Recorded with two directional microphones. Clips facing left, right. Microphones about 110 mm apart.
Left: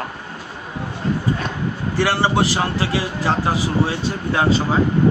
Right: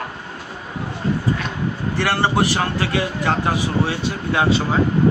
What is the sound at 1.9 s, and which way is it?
Speech, 10° left (ahead or behind).